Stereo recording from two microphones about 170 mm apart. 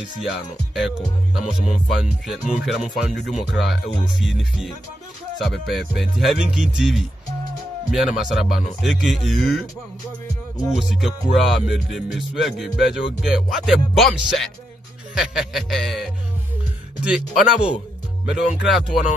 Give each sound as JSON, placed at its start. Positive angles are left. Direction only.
{"t": 0.7, "sound": "music", "side_deg": 0}
{"t": 10.7, "sound": "music", "side_deg": 0}